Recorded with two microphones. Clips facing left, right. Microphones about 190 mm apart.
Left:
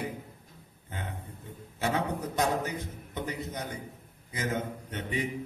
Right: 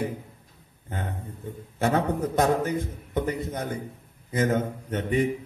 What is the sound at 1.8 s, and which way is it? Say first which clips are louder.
A man's voice: right 6 dB; 50° right (ahead or behind).